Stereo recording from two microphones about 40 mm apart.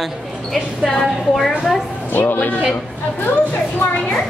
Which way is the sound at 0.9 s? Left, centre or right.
Centre.